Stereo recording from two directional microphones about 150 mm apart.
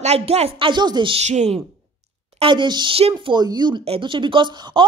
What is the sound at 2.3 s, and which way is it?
A woman's voice, 30° right (ahead or behind).